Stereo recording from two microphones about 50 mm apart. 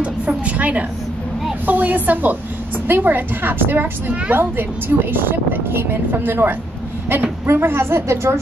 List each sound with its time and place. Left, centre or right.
0.0 s a woman's voice: right